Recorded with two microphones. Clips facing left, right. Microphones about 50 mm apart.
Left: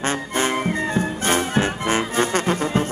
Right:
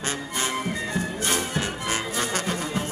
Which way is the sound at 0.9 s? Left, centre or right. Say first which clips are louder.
Left 5 dB; left.